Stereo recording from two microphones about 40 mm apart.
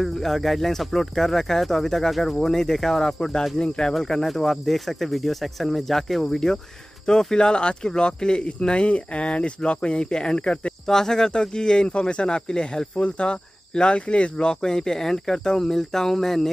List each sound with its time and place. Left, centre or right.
0.0 s speech: centre; by 3.9 s left
3.9 s speech: centre
7.1 s speech: centre
10.9 s speech: centre